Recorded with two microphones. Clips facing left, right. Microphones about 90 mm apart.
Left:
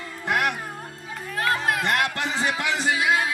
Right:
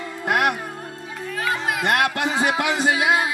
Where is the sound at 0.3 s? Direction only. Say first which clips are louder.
Right 3 dB; 55° right (ahead or behind).